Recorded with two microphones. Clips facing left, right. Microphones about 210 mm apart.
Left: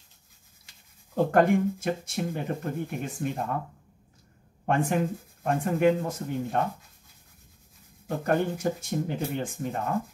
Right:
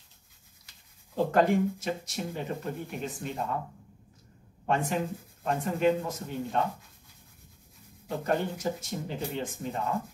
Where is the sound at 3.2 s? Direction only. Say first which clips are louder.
Left 6 dB; 50° left (ahead or behind).